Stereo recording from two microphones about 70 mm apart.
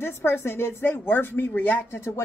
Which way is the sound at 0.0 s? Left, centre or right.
Left.